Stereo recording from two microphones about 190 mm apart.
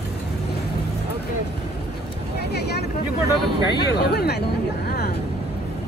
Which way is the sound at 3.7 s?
60° left (ahead or behind).